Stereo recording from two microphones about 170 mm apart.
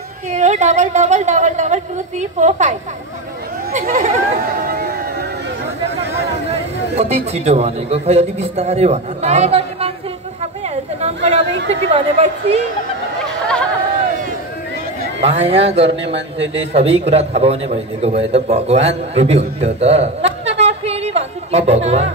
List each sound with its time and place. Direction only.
0.3 s a woman's voice: 45° right (ahead or behind)
3.9 s a woman's voice: 40° right (ahead or behind)
4.6 s a sound: 60° right (ahead or behind)
6.5 s a man's voice: 40° right (ahead or behind)
11.9 s a man's voice: 40° right (ahead or behind)
15.2 s a man's voice: 35° right (ahead or behind)